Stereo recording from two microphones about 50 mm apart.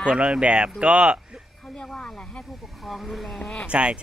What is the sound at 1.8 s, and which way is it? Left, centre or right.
Speech, centre.